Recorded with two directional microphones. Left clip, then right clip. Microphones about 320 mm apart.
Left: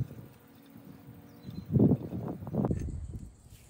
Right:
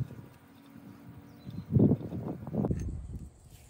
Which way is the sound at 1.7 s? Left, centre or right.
Centre.